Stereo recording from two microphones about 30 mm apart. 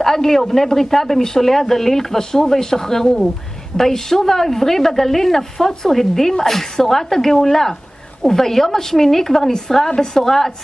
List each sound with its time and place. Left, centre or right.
0.0 s a man's voice: centre